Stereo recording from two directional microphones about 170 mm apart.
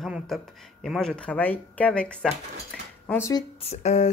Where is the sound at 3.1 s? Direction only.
20° left (ahead or behind).